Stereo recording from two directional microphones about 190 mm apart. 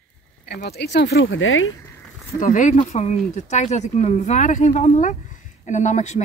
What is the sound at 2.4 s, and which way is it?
Speech, 40° left (ahead or behind).